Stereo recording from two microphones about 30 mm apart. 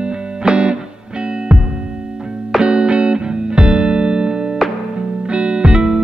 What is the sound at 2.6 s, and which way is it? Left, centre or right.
Music, right.